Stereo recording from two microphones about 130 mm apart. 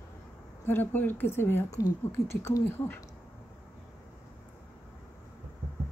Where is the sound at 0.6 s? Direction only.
15° left (ahead or behind).